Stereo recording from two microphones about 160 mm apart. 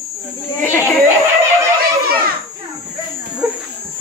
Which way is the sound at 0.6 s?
15° left (ahead or behind).